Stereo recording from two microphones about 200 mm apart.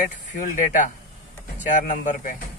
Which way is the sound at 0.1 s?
40° left (ahead or behind).